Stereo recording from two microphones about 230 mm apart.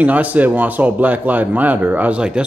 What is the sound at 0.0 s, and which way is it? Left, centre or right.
A man's voice, centre.